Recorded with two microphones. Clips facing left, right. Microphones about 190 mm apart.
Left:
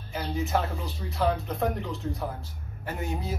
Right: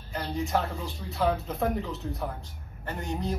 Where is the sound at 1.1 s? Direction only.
Centre (ahead or behind).